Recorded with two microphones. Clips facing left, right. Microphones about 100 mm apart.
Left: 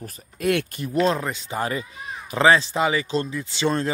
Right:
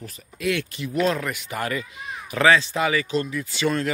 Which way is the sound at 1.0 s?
30° left (ahead or behind).